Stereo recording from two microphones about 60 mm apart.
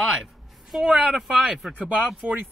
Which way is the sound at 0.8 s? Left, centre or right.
Centre.